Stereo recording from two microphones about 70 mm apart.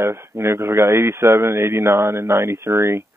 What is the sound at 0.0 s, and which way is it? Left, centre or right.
A man's voice, right.